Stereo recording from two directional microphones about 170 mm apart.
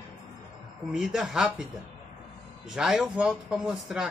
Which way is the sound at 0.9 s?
Centre (ahead or behind).